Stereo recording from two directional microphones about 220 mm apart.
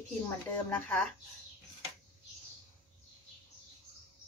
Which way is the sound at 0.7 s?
10° left (ahead or behind).